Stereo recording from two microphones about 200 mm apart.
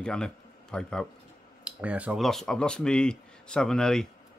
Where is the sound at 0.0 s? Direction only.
5° left (ahead or behind).